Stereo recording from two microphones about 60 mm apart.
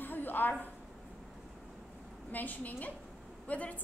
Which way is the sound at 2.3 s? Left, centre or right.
Left.